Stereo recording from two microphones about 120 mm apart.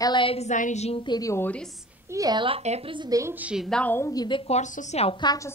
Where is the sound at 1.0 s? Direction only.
35° left (ahead or behind).